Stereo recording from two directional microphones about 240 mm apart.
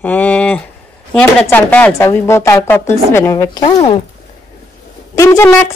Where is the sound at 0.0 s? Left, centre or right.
Centre.